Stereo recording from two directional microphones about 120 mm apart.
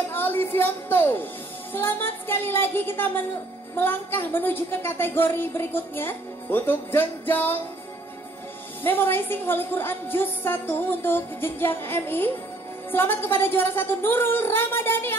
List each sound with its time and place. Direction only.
0.1 s a woman's voice: 20° left (ahead or behind)
8.8 s a woman's voice: 20° left (ahead or behind)